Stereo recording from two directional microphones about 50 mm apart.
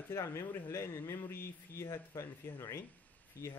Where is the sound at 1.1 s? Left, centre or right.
Left.